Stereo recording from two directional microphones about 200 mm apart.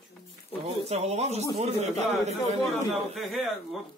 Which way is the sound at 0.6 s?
30° right (ahead or behind).